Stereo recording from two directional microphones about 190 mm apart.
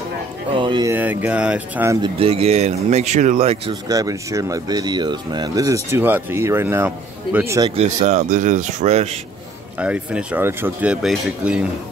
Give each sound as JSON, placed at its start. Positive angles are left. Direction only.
{"t": 0.6, "sound": "speech", "side_deg": -25}
{"t": 0.9, "sound": "speech", "side_deg": -10}
{"t": 2.0, "sound": "speech", "side_deg": -25}
{"t": 3.9, "sound": "speech", "side_deg": -20}
{"t": 7.7, "sound": "speech", "side_deg": -35}
{"t": 9.8, "sound": "speech", "side_deg": -5}